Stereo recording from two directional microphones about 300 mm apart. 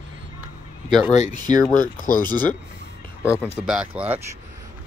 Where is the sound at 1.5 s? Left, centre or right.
Left.